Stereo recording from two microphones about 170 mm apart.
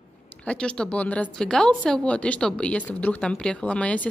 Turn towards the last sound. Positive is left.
turn(degrees=10)  # may be behind; listen again after turning